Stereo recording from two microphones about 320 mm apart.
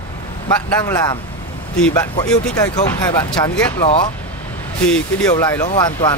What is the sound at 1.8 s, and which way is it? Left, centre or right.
Speech, centre.